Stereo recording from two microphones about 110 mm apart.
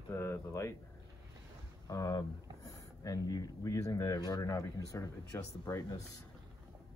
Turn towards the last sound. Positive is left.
turn(degrees=30)  # may be behind; listen again after turning